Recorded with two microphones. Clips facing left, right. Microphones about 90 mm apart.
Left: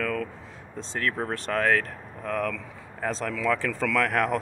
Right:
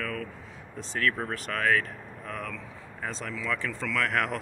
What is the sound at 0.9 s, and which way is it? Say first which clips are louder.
Speech: even; 30° left (ahead or behind).